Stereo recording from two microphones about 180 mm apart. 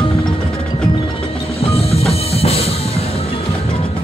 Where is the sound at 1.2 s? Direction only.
30° left (ahead or behind).